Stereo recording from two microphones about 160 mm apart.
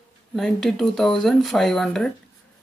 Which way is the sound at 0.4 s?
5° left (ahead or behind).